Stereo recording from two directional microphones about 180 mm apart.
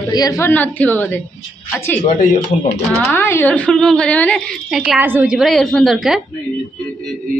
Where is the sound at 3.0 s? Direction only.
15° left (ahead or behind); by 6.2 s 5° right (ahead or behind).